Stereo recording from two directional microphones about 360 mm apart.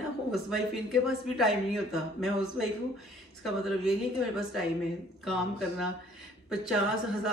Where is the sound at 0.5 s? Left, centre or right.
Centre.